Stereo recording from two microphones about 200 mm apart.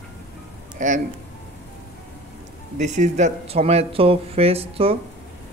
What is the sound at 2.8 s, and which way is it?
Speech, 35° right (ahead or behind).